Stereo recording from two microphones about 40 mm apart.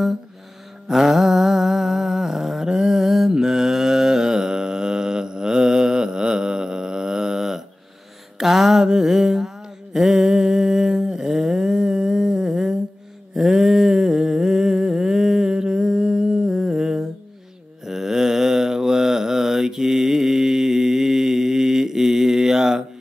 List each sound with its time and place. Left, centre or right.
0.8 s a sound: centre
8.4 s music: centre
8.8 s mantra: centre
9.9 s humming: centre
13.3 s a sound: centre
17.8 s mantra: centre